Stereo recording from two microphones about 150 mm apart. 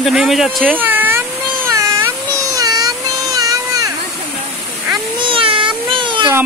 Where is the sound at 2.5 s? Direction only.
25° right (ahead or behind).